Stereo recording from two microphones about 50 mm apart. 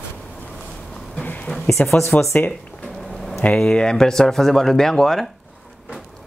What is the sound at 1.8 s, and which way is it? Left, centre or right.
Speech, centre.